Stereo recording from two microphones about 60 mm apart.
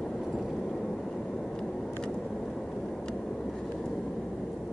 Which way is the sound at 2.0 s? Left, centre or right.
Centre.